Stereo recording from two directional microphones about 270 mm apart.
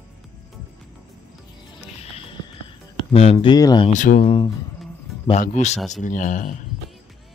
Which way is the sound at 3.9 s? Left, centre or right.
Left.